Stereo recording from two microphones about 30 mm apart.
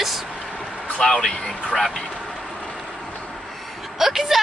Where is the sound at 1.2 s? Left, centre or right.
Left.